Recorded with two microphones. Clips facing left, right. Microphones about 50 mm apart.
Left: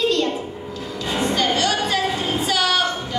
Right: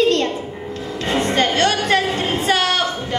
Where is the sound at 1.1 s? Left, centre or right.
Right.